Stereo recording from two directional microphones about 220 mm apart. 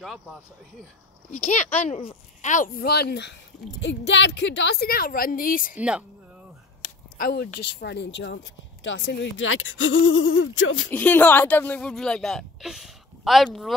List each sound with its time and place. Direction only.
0.0 s speech: centre (ahead or behind)
1.5 s a child's voice: 30° left (ahead or behind)
5.8 s speech: 5° right (ahead or behind)
7.2 s a woman's voice: 45° left (ahead or behind)
10.9 s speech: 10° left (ahead or behind)